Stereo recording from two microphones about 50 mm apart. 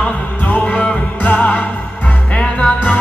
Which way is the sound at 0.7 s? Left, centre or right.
Left.